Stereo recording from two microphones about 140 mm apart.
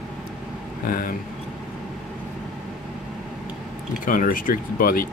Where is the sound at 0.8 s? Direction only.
90° left.